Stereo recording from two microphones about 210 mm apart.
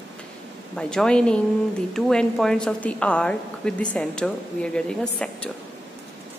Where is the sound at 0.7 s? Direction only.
5° left (ahead or behind).